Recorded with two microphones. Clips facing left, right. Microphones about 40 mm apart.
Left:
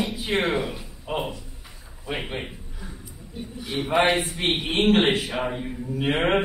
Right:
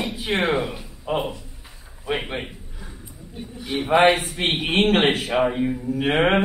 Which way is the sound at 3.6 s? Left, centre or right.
Centre.